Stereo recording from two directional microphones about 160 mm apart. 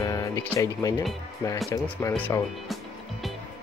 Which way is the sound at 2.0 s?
10° left (ahead or behind).